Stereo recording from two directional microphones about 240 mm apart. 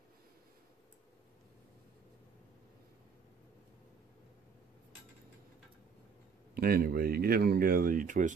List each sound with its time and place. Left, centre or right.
6.5 s speech: right